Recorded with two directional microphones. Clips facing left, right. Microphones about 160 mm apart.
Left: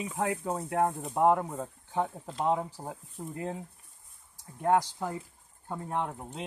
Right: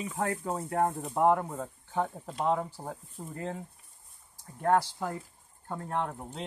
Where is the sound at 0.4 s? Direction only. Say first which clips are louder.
Even; centre (ahead or behind).